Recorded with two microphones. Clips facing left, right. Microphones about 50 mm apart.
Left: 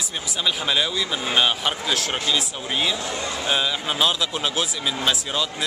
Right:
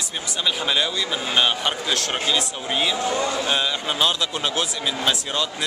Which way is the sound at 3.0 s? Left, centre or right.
Right.